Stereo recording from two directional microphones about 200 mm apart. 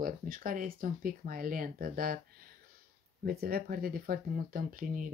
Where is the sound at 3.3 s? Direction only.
50° right (ahead or behind).